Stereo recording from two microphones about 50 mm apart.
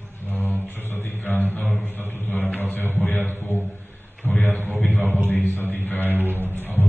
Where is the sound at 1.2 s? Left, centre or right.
Left.